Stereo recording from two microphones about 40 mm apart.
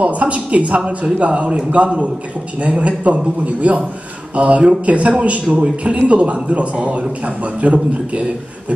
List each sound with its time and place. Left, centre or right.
0.0 s a man's voice: right